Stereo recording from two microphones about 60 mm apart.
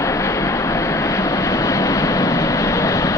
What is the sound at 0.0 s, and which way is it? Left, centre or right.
Vehicle, left.